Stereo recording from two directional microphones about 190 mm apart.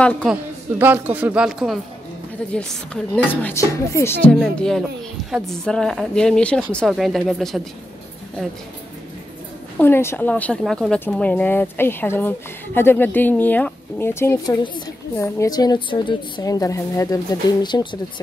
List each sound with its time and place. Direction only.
0.0 s speech: 5° left (ahead or behind)
0.3 s a man's voice: 10° right (ahead or behind)
9.8 s a woman's voice: 10° left (ahead or behind)